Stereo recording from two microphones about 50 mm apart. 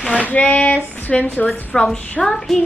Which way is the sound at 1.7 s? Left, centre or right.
Centre.